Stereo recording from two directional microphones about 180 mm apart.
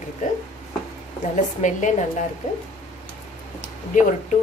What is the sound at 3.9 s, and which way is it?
Speech, 45° left (ahead or behind).